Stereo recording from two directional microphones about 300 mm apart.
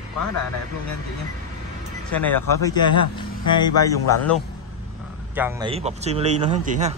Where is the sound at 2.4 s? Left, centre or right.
Left.